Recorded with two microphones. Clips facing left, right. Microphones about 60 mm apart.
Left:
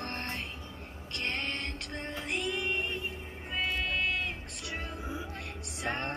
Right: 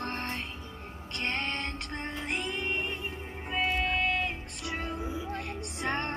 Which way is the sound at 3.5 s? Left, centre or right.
Centre.